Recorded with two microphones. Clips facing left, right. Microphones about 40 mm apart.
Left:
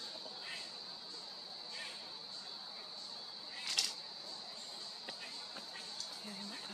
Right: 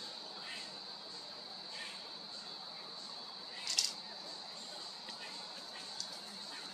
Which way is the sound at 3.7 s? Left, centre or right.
Left.